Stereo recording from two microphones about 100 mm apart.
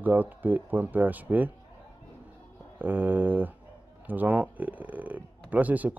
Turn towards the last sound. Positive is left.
turn(degrees=-15)  # may be behind; listen again after turning